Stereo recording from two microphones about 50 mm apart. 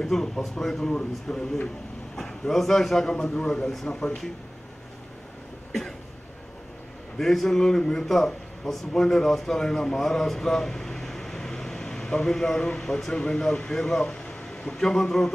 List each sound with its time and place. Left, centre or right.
0.0 s speech: centre
5.7 s cough: centre
7.2 s a man's voice: centre